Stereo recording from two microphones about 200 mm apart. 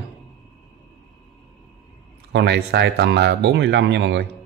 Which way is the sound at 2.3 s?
60° right (ahead or behind).